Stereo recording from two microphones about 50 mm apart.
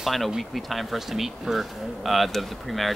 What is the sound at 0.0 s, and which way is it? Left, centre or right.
Speech, centre.